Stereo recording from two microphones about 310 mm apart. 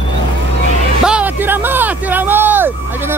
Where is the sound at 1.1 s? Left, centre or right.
Centre.